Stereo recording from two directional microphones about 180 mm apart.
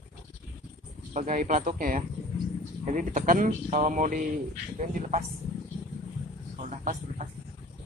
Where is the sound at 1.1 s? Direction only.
45° right (ahead or behind).